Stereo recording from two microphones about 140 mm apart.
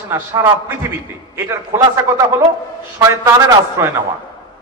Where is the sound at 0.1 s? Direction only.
20° right (ahead or behind).